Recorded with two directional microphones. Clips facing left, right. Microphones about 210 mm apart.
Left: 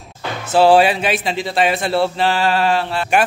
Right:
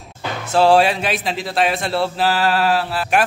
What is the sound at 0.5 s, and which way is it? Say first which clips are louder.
A man's voice: left 2 dB; centre (ahead or behind).